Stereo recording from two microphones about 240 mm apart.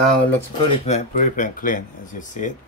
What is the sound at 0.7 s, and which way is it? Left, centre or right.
Speech, left.